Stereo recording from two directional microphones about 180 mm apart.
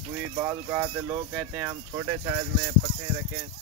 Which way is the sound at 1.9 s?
20° right (ahead or behind).